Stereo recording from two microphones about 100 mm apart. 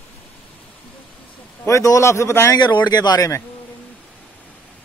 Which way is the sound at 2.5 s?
45° left (ahead or behind).